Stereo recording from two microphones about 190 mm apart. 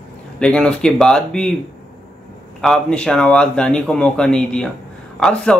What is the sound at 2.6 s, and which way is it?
A man's voice, 5° left (ahead or behind).